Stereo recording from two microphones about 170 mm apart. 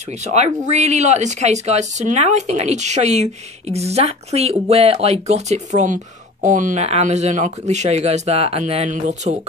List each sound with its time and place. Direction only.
0.2 s speech: 40° right (ahead or behind)